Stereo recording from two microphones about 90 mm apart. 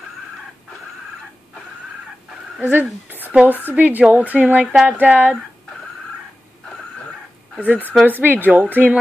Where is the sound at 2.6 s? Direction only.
20° right (ahead or behind).